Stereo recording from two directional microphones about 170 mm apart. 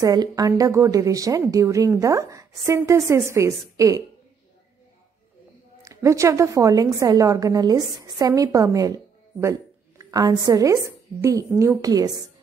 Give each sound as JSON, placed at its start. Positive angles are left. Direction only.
{"t": 0.0, "sound": "a woman's voice", "side_deg": -25}
{"t": 5.8, "sound": "a woman's voice", "side_deg": -20}